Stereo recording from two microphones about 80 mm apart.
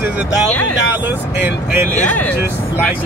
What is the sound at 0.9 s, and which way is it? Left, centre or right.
Speech, right.